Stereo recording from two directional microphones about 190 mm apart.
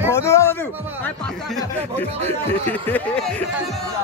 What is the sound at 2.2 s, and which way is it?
Music, 10° left (ahead or behind).